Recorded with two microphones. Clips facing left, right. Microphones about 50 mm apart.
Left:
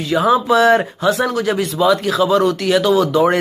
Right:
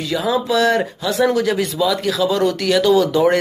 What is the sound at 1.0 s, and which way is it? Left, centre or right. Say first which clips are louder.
Speech: even; centre.